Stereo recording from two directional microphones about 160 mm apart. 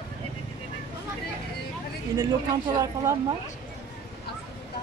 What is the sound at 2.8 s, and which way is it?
Speech, 20° right (ahead or behind).